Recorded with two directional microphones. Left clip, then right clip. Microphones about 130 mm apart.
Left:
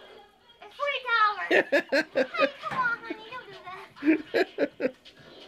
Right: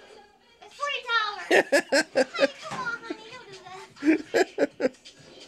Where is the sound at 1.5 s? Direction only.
30° right (ahead or behind).